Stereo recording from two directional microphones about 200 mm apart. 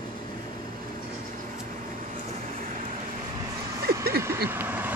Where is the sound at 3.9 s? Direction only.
50° right (ahead or behind).